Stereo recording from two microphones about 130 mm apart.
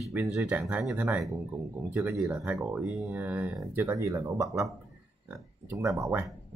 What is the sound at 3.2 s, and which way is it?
Speech, 15° right (ahead or behind).